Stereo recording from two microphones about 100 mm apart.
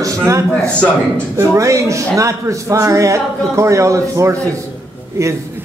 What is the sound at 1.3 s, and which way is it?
A man's voice, 30° right (ahead or behind).